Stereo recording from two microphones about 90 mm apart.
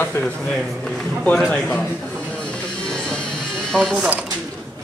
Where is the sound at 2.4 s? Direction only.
10° left (ahead or behind).